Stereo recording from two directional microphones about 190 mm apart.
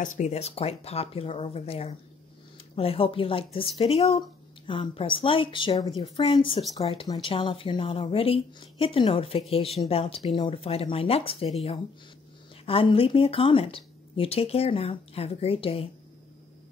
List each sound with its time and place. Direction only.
0.0 s speech: 40° left (ahead or behind)
12.6 s speech: 30° left (ahead or behind)